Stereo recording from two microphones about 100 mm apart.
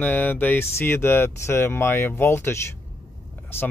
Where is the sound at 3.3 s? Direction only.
20° left (ahead or behind).